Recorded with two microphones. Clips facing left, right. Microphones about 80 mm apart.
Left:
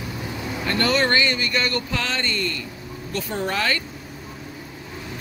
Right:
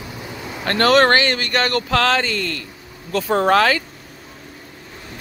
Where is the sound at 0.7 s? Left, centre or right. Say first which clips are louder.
Right 7 dB; right.